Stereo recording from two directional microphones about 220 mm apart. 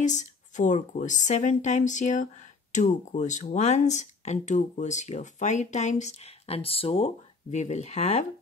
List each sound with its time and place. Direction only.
0.0 s speech: 35° left (ahead or behind)